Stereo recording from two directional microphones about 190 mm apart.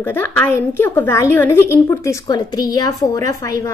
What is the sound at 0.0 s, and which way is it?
A woman's voice, 10° left (ahead or behind).